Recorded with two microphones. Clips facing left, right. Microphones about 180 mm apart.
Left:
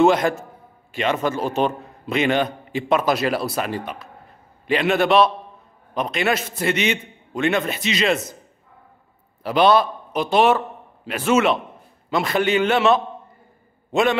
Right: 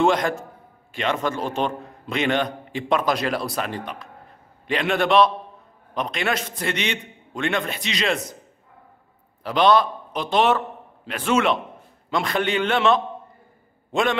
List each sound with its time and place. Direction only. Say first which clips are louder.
0.0 s a man's voice: left 4 dB; 5° left (ahead or behind)
9.4 s a man's voice: left 2 dB; 5° left (ahead or behind)